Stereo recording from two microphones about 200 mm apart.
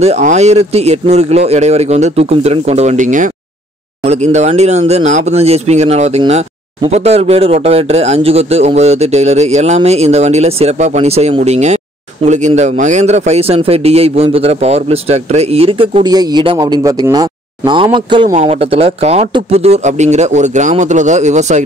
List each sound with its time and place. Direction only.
0.0 s a man's voice: 35° right (ahead or behind)